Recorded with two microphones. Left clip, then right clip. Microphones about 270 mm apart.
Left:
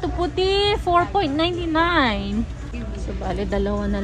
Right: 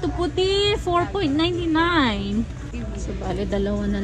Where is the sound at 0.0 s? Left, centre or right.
Centre.